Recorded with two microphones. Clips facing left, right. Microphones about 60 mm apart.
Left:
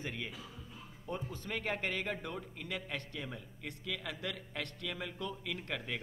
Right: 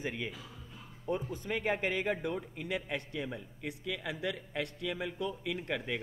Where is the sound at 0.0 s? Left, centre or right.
Centre.